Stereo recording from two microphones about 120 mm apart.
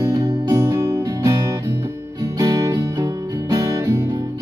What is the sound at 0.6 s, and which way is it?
Music, 20° right (ahead or behind).